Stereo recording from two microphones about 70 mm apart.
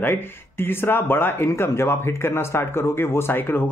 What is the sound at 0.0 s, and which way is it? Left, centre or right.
Speech, left.